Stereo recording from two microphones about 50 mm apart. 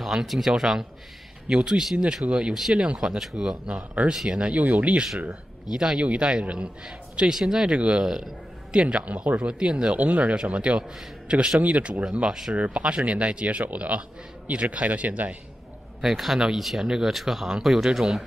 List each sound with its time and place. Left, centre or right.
0.0 s a man's voice: centre
3.7 s a man's voice: right
4.1 s a man's voice: centre
4.9 s a man's voice: centre
7.7 s a man's voice: right
8.0 s speech: centre
8.7 s a man's voice: right
12.5 s a man's voice: right
16.0 s speech: centre